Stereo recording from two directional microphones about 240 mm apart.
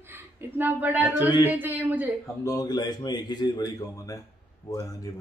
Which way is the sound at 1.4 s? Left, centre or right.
Centre.